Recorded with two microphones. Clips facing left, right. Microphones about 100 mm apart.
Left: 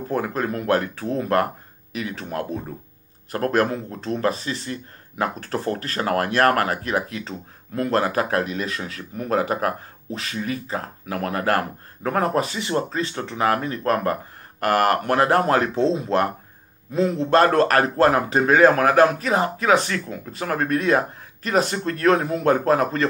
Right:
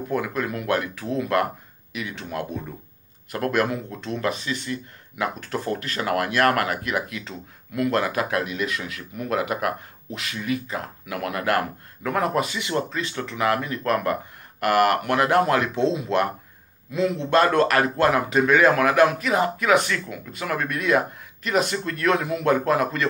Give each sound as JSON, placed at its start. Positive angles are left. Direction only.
{"t": 0.1, "sound": "speech", "side_deg": 35}